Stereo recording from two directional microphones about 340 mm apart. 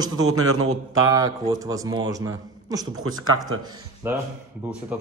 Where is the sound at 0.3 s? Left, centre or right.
Right.